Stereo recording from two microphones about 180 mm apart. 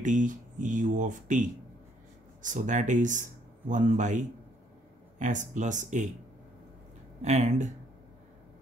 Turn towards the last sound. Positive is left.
turn(degrees=-40)  # may be behind; listen again after turning